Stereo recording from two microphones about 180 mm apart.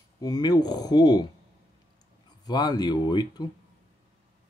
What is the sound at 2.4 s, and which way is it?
Speech, 25° left (ahead or behind).